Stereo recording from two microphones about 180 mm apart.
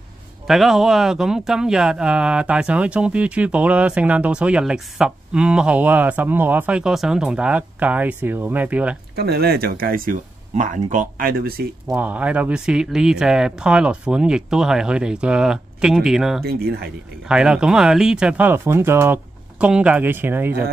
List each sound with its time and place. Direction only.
0.5 s speech: centre (ahead or behind)
9.1 s speech: 60° right (ahead or behind)
11.9 s speech: 10° right (ahead or behind)
16.4 s speech: 60° right (ahead or behind)
17.3 s speech: 5° right (ahead or behind)